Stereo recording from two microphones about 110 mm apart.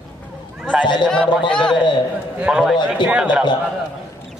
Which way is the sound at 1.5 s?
10° left (ahead or behind).